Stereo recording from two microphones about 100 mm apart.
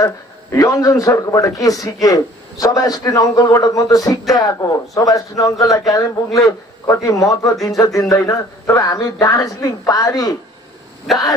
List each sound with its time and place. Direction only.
0.0 s a man's voice: 35° left (ahead or behind)
11.1 s speech: centre (ahead or behind)